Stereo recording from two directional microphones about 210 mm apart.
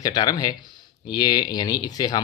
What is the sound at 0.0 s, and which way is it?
Speech, 20° left (ahead or behind).